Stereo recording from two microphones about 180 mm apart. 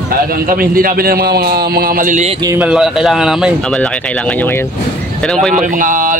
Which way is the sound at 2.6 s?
5° right (ahead or behind).